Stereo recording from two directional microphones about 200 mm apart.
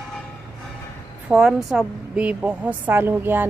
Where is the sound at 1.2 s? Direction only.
5° right (ahead or behind).